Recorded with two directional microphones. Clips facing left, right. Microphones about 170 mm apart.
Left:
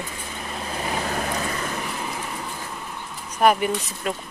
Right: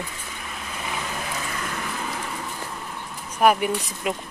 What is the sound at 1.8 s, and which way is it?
Vehicle, 15° left (ahead or behind).